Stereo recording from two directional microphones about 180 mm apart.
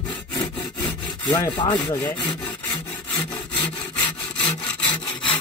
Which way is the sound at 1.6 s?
25° left (ahead or behind).